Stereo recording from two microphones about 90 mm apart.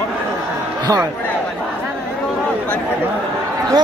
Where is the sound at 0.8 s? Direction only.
40° right (ahead or behind).